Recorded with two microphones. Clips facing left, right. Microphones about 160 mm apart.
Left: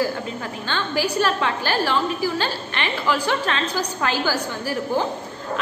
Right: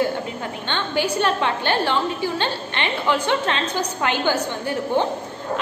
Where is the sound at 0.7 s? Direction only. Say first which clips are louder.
Right 1 dB; 25° right (ahead or behind).